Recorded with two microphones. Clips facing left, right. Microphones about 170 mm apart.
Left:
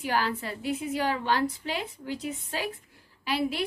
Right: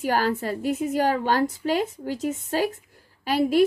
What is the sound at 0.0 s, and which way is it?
A woman's voice, 45° right (ahead or behind).